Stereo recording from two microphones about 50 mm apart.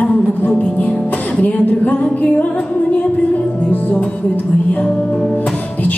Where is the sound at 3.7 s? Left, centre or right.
Left.